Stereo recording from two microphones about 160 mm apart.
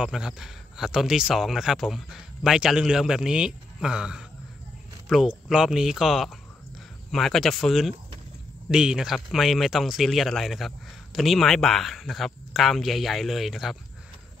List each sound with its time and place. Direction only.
0.0 s speech: 5° right (ahead or behind)